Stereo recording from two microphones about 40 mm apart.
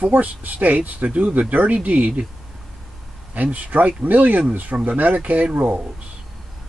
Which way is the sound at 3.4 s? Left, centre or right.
Right.